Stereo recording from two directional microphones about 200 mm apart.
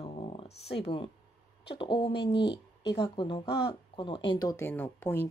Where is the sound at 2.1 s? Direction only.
55° left (ahead or behind).